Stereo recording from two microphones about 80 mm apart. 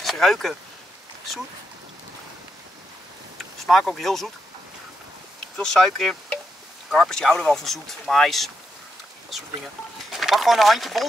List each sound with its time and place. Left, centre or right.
0.0 s speech: centre
3.3 s speech: centre
5.6 s speech: centre
10.1 s speech: centre